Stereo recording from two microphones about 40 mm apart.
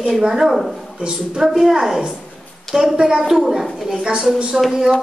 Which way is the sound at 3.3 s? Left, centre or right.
Centre.